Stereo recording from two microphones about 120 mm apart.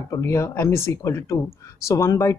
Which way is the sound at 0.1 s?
25° left (ahead or behind).